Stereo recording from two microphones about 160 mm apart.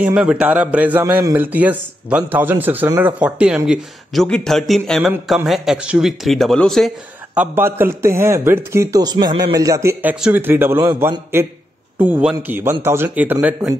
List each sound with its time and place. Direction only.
0.0 s speech: 5° right (ahead or behind)
7.3 s speech: 15° right (ahead or behind)